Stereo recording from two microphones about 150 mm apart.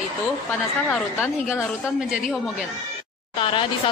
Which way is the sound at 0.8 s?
10° left (ahead or behind).